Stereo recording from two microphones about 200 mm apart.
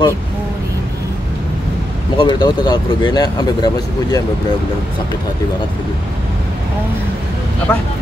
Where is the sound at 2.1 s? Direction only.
20° left (ahead or behind).